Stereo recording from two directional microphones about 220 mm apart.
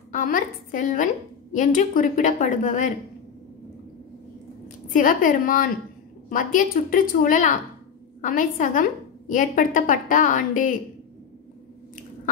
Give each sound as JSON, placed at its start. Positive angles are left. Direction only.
{"t": 0.1, "sound": "a woman's voice", "side_deg": 35}
{"t": 4.9, "sound": "a woman's voice", "side_deg": 40}